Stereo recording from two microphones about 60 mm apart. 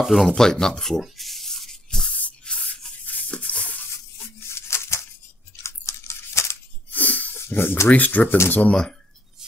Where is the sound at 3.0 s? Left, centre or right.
Left.